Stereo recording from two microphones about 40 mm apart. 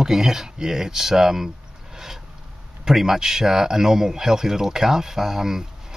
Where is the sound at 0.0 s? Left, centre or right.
Centre.